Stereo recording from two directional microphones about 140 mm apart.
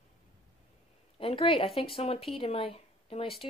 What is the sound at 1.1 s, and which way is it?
Speech, 40° left (ahead or behind).